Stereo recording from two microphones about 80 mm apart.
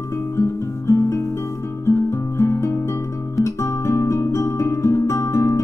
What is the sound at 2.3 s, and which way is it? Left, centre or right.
Music, left.